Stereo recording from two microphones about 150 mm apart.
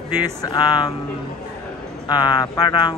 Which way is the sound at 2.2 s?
30° left (ahead or behind).